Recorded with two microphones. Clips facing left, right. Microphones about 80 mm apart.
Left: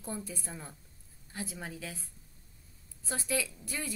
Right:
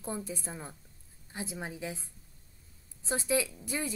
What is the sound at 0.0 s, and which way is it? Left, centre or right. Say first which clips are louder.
A woman's voice: right 3 dB; right.